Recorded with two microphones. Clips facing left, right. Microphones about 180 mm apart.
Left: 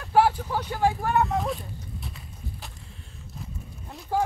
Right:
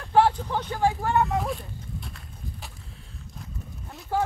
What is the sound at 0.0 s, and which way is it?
Vehicle, 5° left (ahead or behind).